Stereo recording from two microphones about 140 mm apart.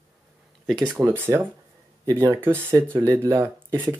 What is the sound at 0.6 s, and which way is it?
Speech, centre (ahead or behind).